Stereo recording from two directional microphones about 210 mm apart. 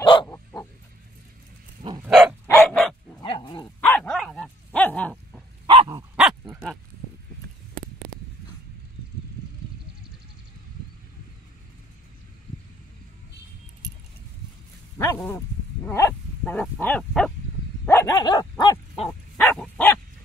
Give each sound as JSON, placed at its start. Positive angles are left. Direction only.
{"t": 0.0, "sound": "wild animals", "side_deg": 25}
{"t": 0.3, "sound": "wild animals", "side_deg": 10}
{"t": 1.8, "sound": "dog", "side_deg": -20}
{"t": 2.0, "sound": "dog", "side_deg": 0}
{"t": 3.2, "sound": "dog", "side_deg": 20}
{"t": 3.8, "sound": "dog", "side_deg": 5}
{"t": 5.7, "sound": "dog", "side_deg": -20}
{"t": 6.1, "sound": "dog", "side_deg": 0}
{"t": 15.0, "sound": "dog", "side_deg": 10}